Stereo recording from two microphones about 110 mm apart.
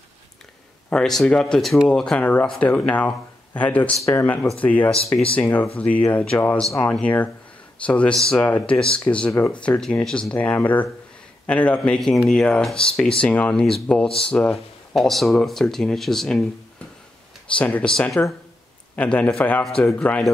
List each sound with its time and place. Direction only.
0.8 s speech: 5° left (ahead or behind)
4.0 s speech: 25° left (ahead or behind)
4.6 s speech: 15° left (ahead or behind)
17.6 s speech: 10° left (ahead or behind)